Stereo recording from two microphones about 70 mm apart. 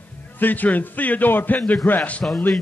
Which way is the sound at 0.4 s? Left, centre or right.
Left.